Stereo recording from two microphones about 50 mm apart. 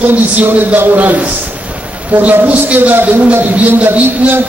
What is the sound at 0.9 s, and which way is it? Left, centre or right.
A woman's voice, right.